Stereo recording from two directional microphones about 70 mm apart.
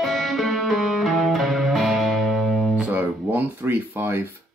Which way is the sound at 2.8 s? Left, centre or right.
Right.